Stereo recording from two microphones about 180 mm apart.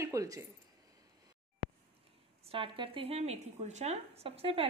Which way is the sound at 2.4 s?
30° right (ahead or behind).